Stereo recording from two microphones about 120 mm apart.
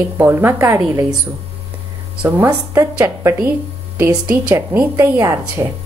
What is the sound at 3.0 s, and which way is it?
Speech, 25° right (ahead or behind).